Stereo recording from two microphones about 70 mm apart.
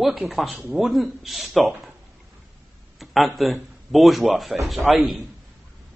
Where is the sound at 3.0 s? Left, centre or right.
Centre.